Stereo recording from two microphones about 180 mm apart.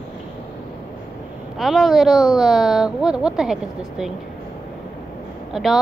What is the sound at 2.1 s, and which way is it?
Speech, 20° left (ahead or behind).